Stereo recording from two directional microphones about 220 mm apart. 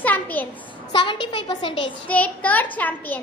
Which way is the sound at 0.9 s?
20° left (ahead or behind).